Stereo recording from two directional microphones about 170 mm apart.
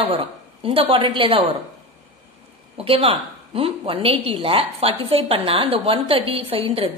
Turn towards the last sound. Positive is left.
turn(degrees=-35)  # may be behind; listen again after turning